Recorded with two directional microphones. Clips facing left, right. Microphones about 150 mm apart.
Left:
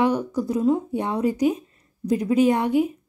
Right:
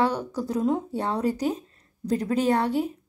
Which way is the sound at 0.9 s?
15° left (ahead or behind).